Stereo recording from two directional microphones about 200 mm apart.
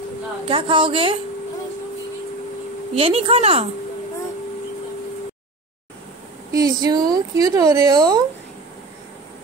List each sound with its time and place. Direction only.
0.5 s speech: 25° right (ahead or behind)
3.0 s speech: 30° right (ahead or behind)
6.5 s speech: 20° right (ahead or behind)